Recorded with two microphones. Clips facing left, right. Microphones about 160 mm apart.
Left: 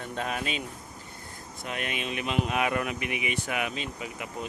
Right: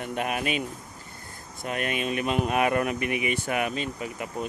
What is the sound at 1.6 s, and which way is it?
Speech, 50° right (ahead or behind).